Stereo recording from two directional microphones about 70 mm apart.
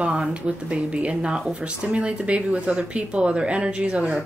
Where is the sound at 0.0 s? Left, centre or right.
Centre.